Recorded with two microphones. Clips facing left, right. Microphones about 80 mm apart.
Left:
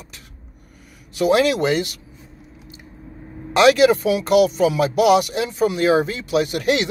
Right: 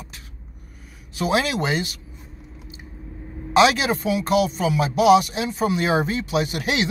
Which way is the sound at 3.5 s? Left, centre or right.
Left.